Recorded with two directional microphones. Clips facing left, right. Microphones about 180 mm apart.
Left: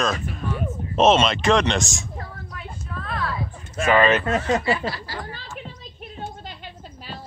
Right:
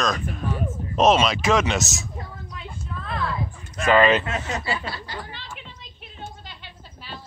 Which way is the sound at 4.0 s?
15° right (ahead or behind).